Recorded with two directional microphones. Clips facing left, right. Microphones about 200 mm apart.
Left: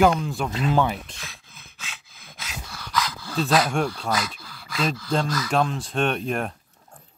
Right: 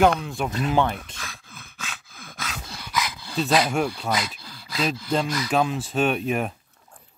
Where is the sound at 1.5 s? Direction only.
50° right (ahead or behind).